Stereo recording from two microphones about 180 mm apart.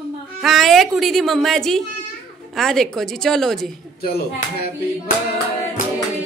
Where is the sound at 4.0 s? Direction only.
60° left (ahead or behind).